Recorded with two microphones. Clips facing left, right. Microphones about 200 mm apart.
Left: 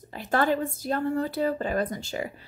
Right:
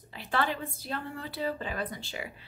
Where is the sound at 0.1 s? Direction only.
45° left (ahead or behind).